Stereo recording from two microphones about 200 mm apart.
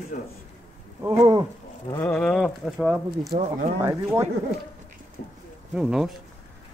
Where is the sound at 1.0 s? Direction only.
15° right (ahead or behind).